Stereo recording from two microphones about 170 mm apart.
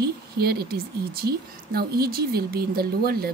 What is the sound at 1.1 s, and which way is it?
Speech, 65° right (ahead or behind).